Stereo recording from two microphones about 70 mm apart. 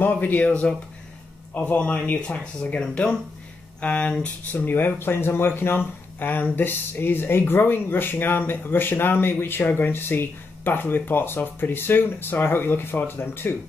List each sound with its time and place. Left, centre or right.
0.0 s speech: left